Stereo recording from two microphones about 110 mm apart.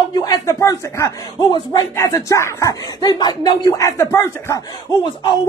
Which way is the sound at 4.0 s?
25° left (ahead or behind).